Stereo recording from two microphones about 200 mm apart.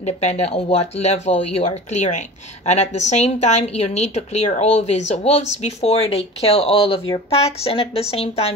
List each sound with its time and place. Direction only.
0.0 s speech: 30° left (ahead or behind)